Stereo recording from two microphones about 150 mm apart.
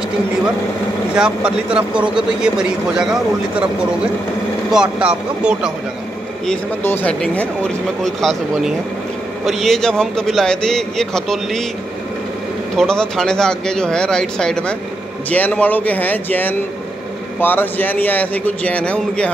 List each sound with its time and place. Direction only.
1.1 s a man's voice: 5° right (ahead or behind)
4.6 s a man's voice: 5° right (ahead or behind)
6.8 s a man's voice: 15° left (ahead or behind)
12.7 s a man's voice: 5° left (ahead or behind)